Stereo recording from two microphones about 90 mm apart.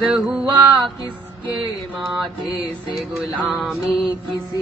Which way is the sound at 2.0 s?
Centre (ahead or behind).